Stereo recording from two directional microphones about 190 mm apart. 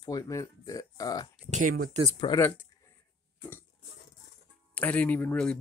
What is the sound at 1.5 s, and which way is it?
Speech, 45° right (ahead or behind).